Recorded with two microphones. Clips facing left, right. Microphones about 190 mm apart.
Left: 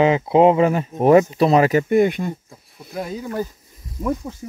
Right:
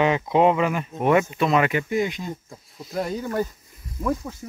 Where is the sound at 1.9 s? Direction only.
55° left (ahead or behind).